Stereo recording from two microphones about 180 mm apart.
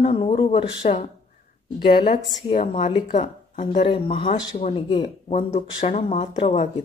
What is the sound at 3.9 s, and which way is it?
Speech, 30° left (ahead or behind).